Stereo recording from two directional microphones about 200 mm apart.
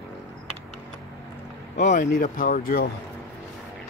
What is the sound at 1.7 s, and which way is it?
Speech, 35° left (ahead or behind).